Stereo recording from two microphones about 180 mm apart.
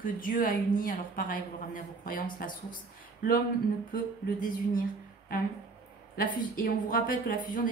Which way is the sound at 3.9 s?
50° left (ahead or behind).